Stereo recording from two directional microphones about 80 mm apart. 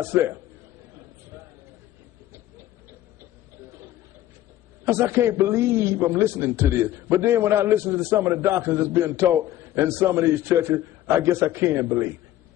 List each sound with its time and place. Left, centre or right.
0.0 s a man's voice: right
1.3 s a sound: right
4.8 s a man's voice: right